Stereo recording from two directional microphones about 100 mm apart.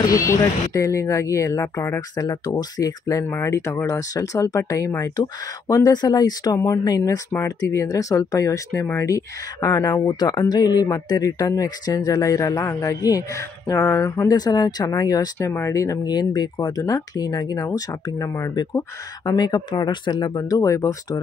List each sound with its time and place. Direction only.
0.0 s speech: 35° left (ahead or behind)
2.1 s speech: 40° left (ahead or behind)
15.3 s speech: 25° left (ahead or behind)